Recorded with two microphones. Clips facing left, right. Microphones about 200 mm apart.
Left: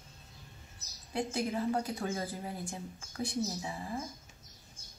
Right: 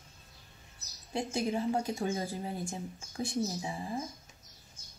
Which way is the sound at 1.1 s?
20° right (ahead or behind).